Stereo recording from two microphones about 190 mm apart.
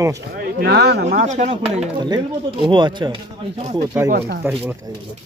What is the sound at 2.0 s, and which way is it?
Speech, 25° right (ahead or behind).